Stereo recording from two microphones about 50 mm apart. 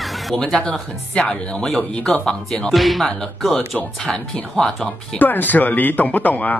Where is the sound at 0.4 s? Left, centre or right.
Centre.